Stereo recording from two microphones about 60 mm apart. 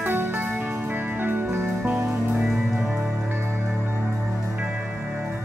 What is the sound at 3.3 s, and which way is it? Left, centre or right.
Music, right.